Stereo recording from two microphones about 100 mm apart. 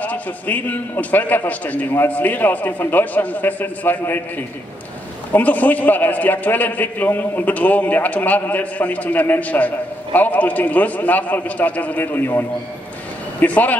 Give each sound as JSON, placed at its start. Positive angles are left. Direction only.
{"t": 0.0, "sound": "a man's voice", "side_deg": 15}